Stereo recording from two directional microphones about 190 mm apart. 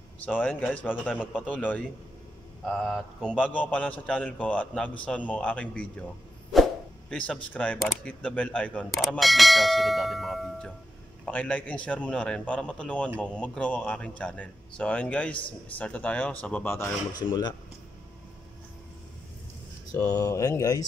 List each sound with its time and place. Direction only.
0.2 s a man's voice: 5° left (ahead or behind); by 17.6 s 25° left (ahead or behind)
19.9 s a man's voice: 15° left (ahead or behind)